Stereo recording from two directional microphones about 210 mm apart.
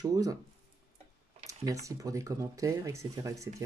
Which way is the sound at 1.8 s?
15° right (ahead or behind).